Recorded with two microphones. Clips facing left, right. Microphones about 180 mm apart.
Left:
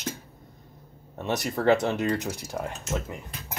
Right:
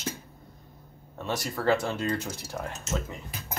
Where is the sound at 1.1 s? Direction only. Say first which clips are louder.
Left 4 dB; 20° left (ahead or behind).